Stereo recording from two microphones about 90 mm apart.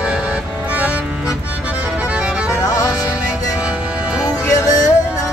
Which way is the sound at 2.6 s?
40° left (ahead or behind).